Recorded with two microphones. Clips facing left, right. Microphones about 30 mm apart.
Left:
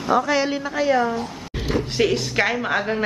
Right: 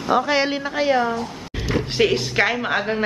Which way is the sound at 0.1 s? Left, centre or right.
Right.